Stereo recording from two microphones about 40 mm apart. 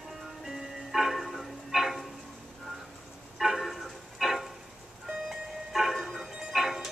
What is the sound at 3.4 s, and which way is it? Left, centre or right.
Vehicle, centre.